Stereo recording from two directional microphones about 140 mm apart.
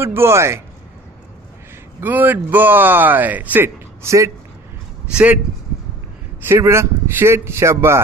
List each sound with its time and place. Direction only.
0.0 s speech: 15° right (ahead or behind)
2.0 s speech: 10° right (ahead or behind)
6.4 s speech: 20° right (ahead or behind)